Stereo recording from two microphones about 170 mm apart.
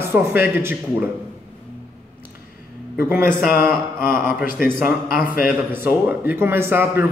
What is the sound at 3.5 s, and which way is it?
Mantra, 60° left (ahead or behind).